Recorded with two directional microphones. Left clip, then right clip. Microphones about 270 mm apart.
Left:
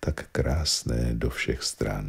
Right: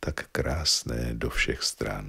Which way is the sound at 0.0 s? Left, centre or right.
Centre.